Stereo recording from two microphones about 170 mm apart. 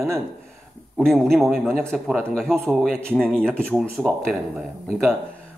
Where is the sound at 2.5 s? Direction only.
10° right (ahead or behind).